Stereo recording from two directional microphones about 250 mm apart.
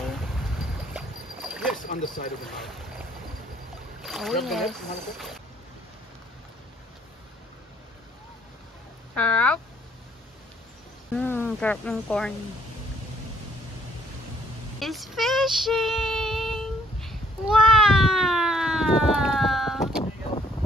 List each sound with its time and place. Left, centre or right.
0.0 s boat: centre
1.9 s speech: left
2.4 s speech: centre
4.0 s speech: centre
9.1 s speech: centre
11.1 s speech: centre
14.8 s child singing: centre